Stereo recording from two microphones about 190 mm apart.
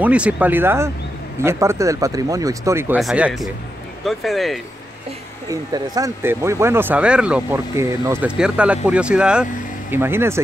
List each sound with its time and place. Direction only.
0.0 s speech: 5° right (ahead or behind)
5.5 s speech: 15° right (ahead or behind)